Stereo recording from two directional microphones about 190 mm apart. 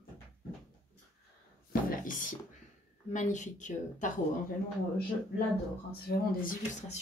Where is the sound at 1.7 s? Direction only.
45° left (ahead or behind).